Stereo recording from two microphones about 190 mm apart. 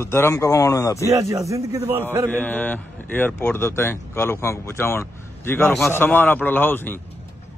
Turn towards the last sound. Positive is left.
turn(degrees=10)  # may be behind; listen again after turning